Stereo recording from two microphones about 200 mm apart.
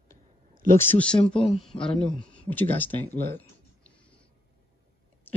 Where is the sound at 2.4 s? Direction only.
10° left (ahead or behind).